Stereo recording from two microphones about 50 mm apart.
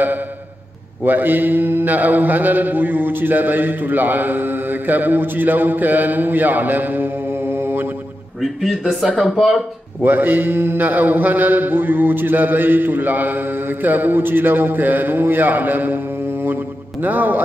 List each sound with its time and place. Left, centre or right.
1.0 s mantra: right
9.2 s speech: centre
10.0 s mantra: right
17.0 s mantra: right